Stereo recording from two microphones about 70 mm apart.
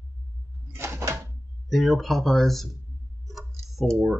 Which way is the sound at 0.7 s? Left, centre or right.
Right.